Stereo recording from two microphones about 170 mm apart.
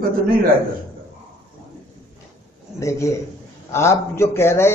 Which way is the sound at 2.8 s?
15° left (ahead or behind).